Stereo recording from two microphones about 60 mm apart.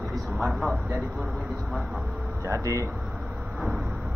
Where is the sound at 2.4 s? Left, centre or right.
Right.